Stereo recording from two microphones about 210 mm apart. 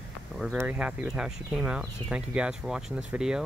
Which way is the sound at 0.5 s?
5° right (ahead or behind).